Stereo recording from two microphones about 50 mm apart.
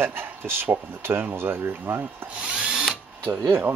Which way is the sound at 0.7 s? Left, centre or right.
Right.